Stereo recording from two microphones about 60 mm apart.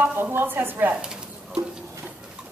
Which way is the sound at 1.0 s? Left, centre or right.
Centre.